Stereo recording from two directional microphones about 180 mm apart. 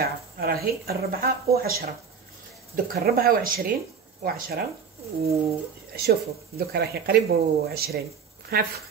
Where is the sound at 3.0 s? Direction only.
55° right (ahead or behind).